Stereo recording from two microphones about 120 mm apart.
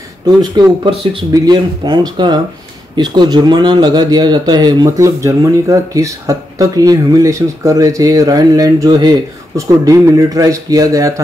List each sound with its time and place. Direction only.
0.6 s a man's voice: 35° right (ahead or behind)